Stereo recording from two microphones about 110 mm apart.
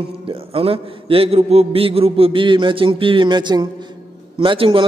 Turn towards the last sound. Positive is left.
turn(degrees=-50)  # may be behind; listen again after turning